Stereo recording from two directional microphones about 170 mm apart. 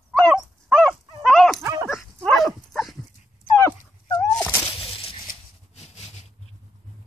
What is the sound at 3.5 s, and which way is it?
Dog, 15° left (ahead or behind).